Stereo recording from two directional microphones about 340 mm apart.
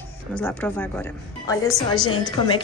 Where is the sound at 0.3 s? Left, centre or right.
Centre.